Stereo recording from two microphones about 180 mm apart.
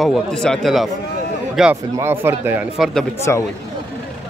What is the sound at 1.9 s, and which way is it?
Speech, 15° right (ahead or behind).